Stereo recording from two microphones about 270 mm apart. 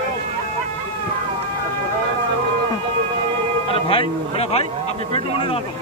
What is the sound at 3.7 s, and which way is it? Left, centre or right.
A man's voice, centre.